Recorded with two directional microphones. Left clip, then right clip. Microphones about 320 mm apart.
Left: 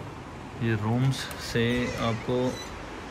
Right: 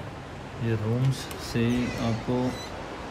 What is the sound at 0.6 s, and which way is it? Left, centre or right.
Speech, centre.